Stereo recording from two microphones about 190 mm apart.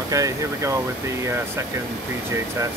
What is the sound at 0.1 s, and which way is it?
Speech, 15° right (ahead or behind).